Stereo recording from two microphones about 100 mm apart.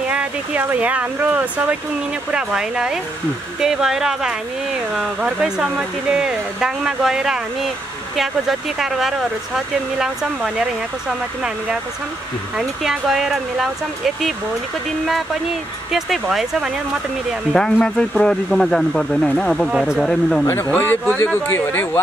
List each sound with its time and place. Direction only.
0.1 s speech: 10° right (ahead or behind)
15.9 s speech: 5° right (ahead or behind)
17.5 s speech: 5° left (ahead or behind)
20.4 s speech: 25° left (ahead or behind)